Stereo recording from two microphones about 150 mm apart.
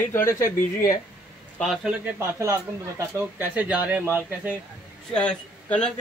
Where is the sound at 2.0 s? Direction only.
15° right (ahead or behind).